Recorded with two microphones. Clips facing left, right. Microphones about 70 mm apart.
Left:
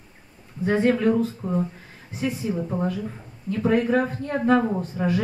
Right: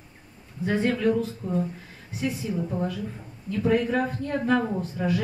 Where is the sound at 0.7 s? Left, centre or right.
Left.